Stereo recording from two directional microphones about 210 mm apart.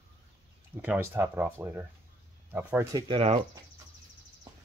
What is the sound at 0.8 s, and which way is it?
Speech, 10° right (ahead or behind).